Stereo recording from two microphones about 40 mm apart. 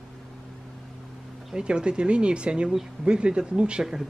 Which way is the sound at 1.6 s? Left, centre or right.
Right.